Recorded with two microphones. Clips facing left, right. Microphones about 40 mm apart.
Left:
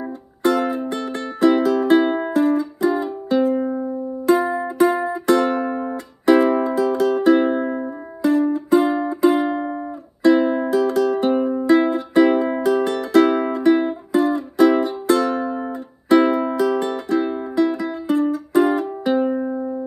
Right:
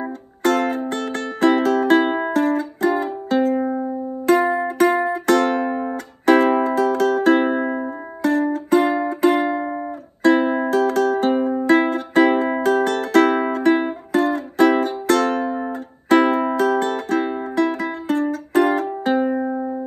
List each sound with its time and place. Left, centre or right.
0.4 s music: right
3.6 s music: centre
4.3 s music: right
7.5 s music: centre
8.2 s music: right
10.7 s music: right
19.2 s music: right